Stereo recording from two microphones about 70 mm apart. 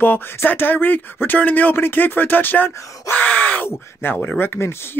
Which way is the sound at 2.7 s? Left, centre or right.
Left.